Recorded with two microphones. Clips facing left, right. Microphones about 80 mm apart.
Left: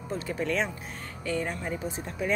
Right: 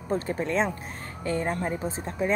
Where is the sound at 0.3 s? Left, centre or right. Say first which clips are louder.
Even; right.